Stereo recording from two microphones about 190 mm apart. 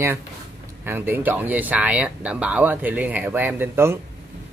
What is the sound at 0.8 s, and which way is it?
Speech, 10° right (ahead or behind).